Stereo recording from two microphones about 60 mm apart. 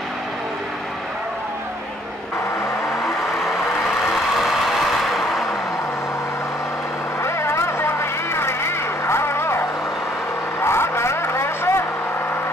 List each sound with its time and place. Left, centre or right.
5.0 s a sound: centre
7.2 s vehicle: left
10.6 s vehicle: left